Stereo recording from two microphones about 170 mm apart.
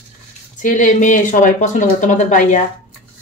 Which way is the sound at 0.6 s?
50° left (ahead or behind).